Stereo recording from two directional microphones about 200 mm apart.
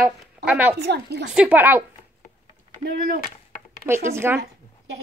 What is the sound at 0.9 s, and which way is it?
Speech, 55° right (ahead or behind).